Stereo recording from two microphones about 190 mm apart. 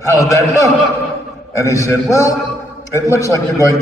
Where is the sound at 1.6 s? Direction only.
15° left (ahead or behind).